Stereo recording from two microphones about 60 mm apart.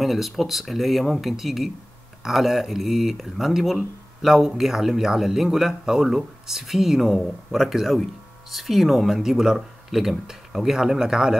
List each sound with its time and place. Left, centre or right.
0.0 s speech: centre